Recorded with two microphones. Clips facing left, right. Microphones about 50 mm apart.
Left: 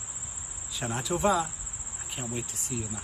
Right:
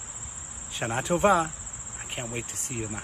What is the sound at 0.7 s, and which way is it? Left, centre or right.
Speech, right.